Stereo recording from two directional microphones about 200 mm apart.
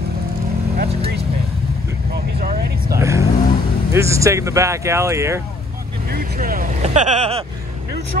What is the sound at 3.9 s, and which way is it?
Speech, 15° right (ahead or behind).